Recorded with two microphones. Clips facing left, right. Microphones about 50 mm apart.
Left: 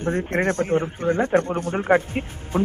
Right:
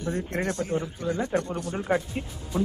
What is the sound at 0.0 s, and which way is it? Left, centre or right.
A man's voice, left.